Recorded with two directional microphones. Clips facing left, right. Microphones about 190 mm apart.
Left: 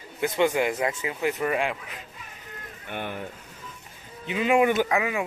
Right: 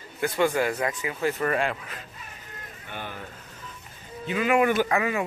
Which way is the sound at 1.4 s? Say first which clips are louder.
Even; 10° left (ahead or behind).